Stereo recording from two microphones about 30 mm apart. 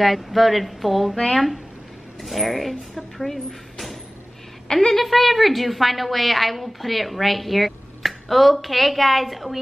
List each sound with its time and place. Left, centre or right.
0.0 s a woman's voice: centre
4.7 s a woman's voice: left
5.0 s a woman's voice: centre